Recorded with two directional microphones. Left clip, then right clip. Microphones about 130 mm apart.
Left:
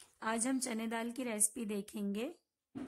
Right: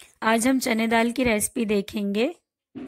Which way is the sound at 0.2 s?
30° right (ahead or behind).